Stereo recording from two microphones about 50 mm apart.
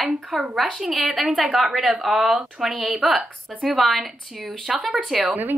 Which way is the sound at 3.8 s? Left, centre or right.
Centre.